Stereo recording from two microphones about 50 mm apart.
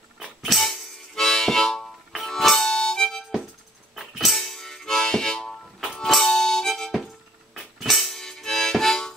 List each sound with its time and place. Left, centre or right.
0.2 s harmonica: centre
3.9 s harmonica: centre
7.5 s harmonica: centre